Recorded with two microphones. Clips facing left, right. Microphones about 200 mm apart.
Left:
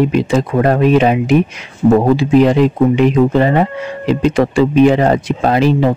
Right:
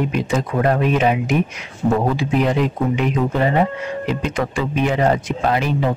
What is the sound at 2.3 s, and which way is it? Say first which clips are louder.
Speech: left 9 dB; 90° left.